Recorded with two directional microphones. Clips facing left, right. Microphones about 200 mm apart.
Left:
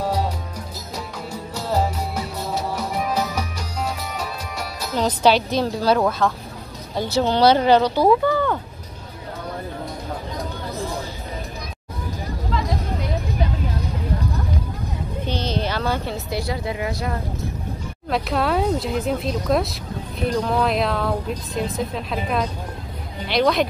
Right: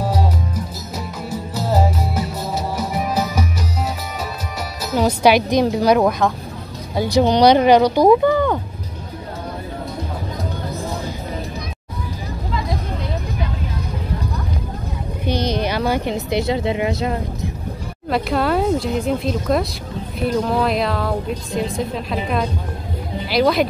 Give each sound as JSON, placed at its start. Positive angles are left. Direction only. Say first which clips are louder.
{"t": 0.9, "sound": "music", "louder": "right 4 dB", "side_deg": -5}
{"t": 4.9, "sound": "a woman's voice", "louder": "right 3 dB", "side_deg": -10}
{"t": 15.2, "sound": "speech", "louder": "right 5 dB", "side_deg": -15}
{"t": 18.1, "sound": "speech", "louder": "right 3 dB", "side_deg": 0}